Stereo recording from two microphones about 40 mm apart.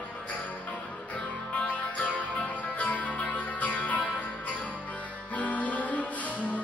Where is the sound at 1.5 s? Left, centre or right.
Left.